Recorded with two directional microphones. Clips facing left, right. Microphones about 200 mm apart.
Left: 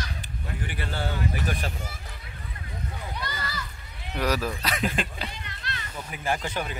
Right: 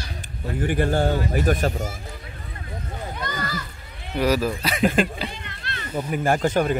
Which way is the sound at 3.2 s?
45° right (ahead or behind).